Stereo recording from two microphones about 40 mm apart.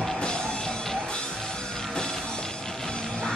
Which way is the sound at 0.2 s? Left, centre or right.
Left.